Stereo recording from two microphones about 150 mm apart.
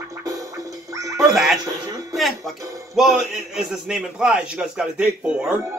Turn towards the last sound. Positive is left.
turn(degrees=-5)  # may be behind; listen again after turning